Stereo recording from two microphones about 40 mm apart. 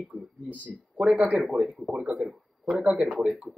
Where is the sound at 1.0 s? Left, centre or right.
Centre.